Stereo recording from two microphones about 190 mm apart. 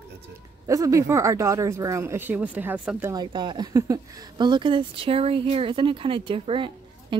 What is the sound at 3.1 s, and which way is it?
Speech, 25° right (ahead or behind).